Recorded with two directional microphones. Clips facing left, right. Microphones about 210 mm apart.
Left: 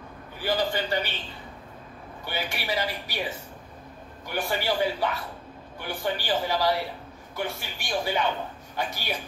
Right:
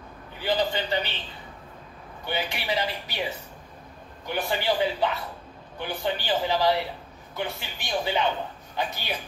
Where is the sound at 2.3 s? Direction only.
20° right (ahead or behind).